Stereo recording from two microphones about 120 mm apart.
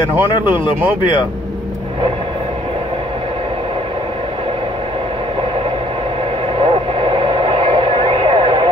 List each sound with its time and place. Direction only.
0.1 s speech: 15° right (ahead or behind)
6.6 s radio: 45° right (ahead or behind)